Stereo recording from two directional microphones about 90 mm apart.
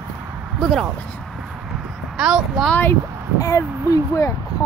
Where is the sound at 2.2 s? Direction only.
10° right (ahead or behind).